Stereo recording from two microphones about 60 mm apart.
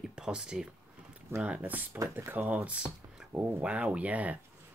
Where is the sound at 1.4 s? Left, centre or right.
Right.